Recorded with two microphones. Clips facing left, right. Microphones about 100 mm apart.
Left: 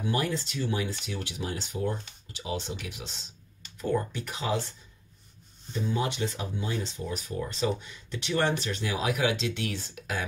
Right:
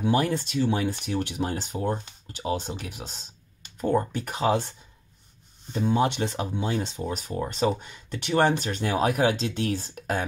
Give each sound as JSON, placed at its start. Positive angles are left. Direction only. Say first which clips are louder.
{"t": 0.0, "sound": "speech", "louder": "right 5 dB", "side_deg": -55}